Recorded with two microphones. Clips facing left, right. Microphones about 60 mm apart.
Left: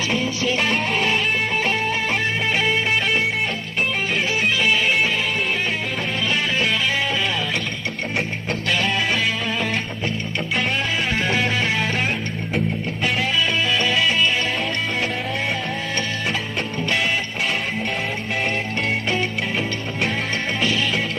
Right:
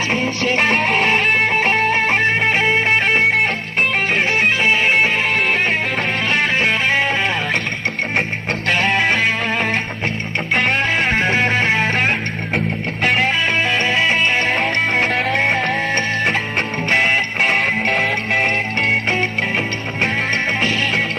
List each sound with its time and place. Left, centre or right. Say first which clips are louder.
0.4 s music: right 4 dB; right
2.6 s music: right 5 dB; right
4.6 s music: right 4 dB; right
5.3 s music: right 6 dB; right
8.6 s music: right 5 dB; right
15.9 s music: right 6 dB; right